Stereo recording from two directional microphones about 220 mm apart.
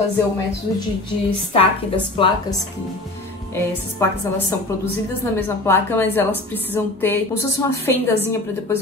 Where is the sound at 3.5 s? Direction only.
15° left (ahead or behind).